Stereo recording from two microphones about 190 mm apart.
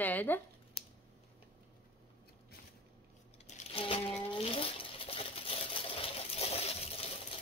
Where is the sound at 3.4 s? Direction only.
35° left (ahead or behind).